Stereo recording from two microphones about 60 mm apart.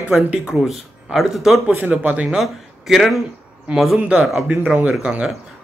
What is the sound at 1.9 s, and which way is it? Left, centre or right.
Speech, right.